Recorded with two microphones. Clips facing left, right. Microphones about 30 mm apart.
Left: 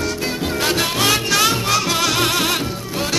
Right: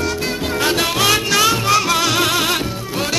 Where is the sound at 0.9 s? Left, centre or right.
Right.